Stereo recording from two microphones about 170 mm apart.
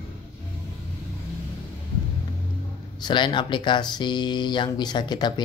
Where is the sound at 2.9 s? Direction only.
25° left (ahead or behind).